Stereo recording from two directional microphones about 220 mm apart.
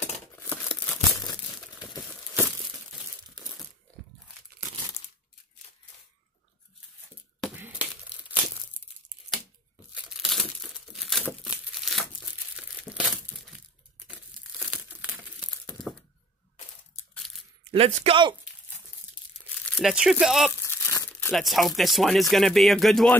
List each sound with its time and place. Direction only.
0.4 s crumpling: 5° left (ahead or behind)
7.5 s a sound: 5° right (ahead or behind)
10.0 s crumpling: centre (ahead or behind)
17.1 s a sound: centre (ahead or behind)
17.6 s speech: 25° right (ahead or behind)
19.8 s speech: centre (ahead or behind)
20.5 s crumpling: 10° left (ahead or behind)
21.3 s speech: centre (ahead or behind)